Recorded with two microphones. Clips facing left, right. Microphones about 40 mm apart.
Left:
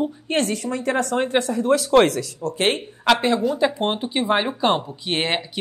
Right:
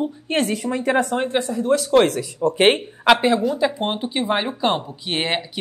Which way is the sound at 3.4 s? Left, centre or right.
Centre.